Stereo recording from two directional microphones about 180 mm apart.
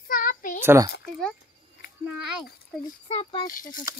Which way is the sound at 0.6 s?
15° right (ahead or behind).